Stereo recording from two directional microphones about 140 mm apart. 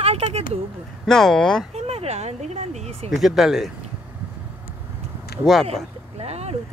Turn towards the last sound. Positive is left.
turn(degrees=-50)  # may be behind; listen again after turning